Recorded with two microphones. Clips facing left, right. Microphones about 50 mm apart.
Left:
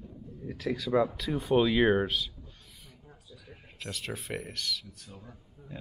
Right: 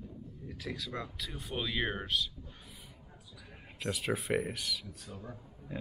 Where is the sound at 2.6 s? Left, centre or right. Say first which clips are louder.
Right 2 dB; centre.